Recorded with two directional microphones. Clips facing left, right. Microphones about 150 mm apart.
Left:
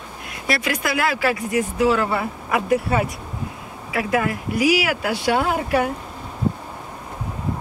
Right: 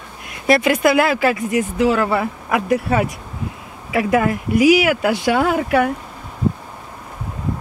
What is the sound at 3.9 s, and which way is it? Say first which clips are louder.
Speech: right 5 dB; 25° right (ahead or behind).